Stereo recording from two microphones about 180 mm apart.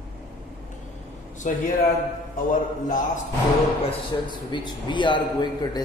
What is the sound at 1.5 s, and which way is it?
Speech, 45° left (ahead or behind).